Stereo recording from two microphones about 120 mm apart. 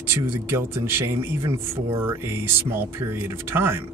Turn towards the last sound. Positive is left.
turn(degrees=-20)  # may be behind; listen again after turning